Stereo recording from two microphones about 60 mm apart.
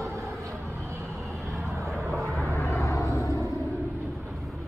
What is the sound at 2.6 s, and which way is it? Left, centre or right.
Vehicle, left.